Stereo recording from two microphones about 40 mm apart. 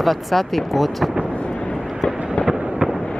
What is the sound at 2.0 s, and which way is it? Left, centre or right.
Fireworks, left.